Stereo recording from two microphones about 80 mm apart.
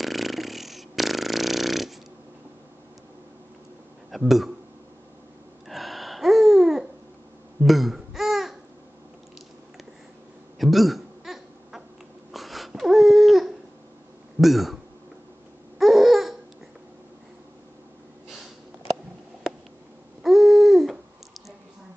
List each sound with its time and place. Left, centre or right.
0.0 s a sound: centre
4.1 s speech: centre
5.7 s babbling: centre
10.6 s hiccup: centre
12.3 s a sound: centre
15.8 s babbling: centre
20.2 s hoot: centre